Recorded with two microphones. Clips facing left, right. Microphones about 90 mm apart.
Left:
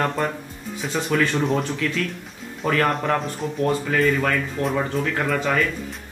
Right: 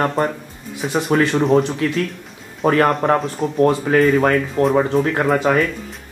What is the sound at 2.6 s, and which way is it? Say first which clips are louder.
Speech: right 6 dB; 35° right (ahead or behind).